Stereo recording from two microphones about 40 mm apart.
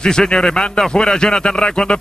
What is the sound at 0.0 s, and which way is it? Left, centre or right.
A man's voice, centre.